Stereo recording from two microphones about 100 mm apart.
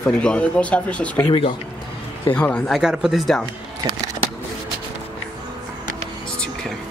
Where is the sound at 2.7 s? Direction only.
5° right (ahead or behind).